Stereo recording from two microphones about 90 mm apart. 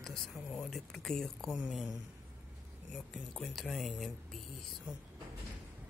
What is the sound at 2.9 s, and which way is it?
Speech, centre (ahead or behind).